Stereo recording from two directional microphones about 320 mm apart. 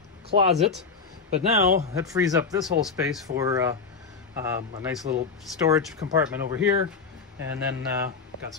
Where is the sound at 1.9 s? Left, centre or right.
Centre.